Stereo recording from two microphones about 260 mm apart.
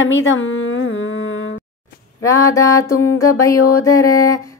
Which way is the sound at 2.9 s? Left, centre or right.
Left.